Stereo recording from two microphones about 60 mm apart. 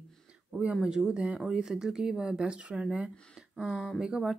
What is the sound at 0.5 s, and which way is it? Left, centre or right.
Speech, centre.